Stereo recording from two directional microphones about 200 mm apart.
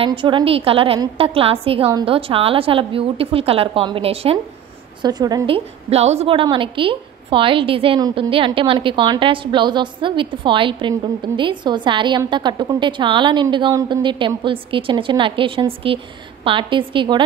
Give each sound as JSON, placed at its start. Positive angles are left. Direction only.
{"t": 0.0, "sound": "a woman's voice", "side_deg": -25}
{"t": 5.9, "sound": "a woman's voice", "side_deg": -30}